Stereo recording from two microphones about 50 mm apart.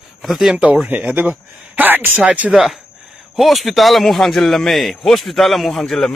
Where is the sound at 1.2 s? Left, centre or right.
Right.